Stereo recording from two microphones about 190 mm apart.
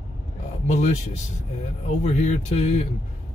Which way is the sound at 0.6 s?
35° left (ahead or behind).